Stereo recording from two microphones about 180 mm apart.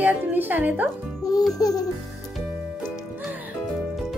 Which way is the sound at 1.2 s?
20° left (ahead or behind).